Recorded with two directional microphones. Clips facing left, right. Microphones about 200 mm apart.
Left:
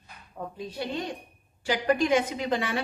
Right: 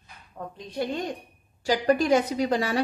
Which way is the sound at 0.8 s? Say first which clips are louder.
Right 4 dB; 50° right (ahead or behind).